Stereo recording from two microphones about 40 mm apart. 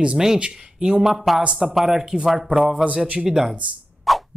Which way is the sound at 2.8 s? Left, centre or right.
Right.